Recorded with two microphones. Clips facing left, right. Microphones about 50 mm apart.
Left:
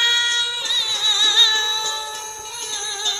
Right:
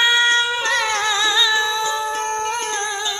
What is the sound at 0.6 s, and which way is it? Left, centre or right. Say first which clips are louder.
Music: right 6 dB; right.